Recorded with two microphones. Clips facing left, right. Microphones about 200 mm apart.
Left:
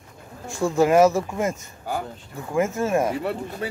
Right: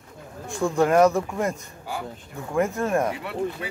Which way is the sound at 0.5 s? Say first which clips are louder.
Left 2 dB; centre (ahead or behind).